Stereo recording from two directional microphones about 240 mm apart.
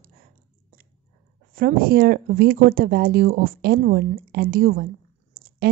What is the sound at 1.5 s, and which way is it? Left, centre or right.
Speech, right.